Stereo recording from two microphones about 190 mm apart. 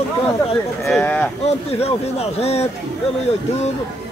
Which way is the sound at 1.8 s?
35° left (ahead or behind).